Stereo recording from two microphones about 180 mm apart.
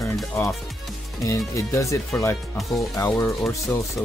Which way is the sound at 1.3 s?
15° left (ahead or behind).